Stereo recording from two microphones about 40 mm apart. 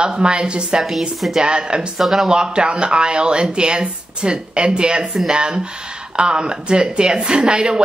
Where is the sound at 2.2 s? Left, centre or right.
Right.